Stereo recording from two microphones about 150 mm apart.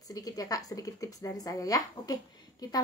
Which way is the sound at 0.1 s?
25° left (ahead or behind).